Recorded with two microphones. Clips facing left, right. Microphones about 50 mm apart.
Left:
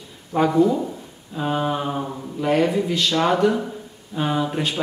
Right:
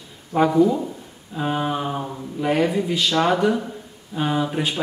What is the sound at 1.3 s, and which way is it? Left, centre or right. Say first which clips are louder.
Speech: left 1 dB; centre.